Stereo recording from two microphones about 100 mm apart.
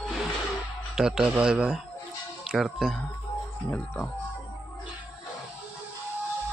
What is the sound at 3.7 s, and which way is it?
Speech, 15° left (ahead or behind).